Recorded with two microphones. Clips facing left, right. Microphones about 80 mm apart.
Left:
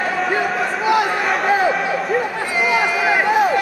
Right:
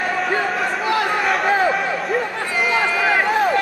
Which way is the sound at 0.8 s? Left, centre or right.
Centre.